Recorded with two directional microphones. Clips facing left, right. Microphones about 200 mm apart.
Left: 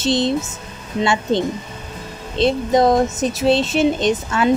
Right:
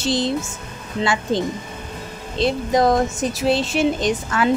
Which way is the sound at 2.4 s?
25° left (ahead or behind).